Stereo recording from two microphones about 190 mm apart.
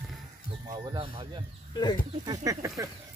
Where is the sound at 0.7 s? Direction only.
25° right (ahead or behind).